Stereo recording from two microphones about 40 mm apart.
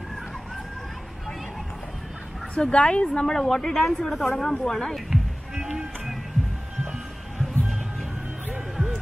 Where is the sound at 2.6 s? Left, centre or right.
Left.